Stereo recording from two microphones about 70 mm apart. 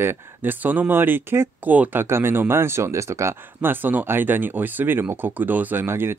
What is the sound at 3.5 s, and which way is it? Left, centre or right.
Speech, right.